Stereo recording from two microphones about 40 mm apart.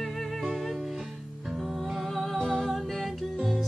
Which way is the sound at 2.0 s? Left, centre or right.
Centre.